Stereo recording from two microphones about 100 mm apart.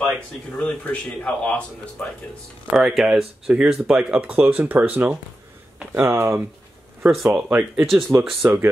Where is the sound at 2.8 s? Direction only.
5° right (ahead or behind); by 6.4 s 25° right (ahead or behind).